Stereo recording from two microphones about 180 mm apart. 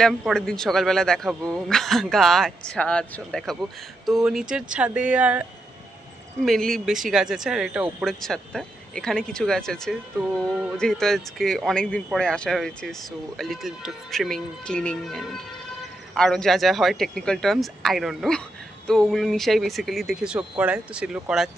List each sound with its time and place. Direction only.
0.0 s a man's voice: 5° left (ahead or behind)
6.4 s a man's voice: centre (ahead or behind)